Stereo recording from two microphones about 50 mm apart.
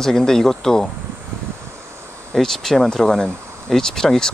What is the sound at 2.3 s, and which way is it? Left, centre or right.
Speech, centre.